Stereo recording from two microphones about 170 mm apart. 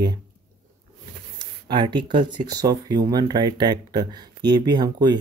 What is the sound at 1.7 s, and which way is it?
Speech, 25° right (ahead or behind).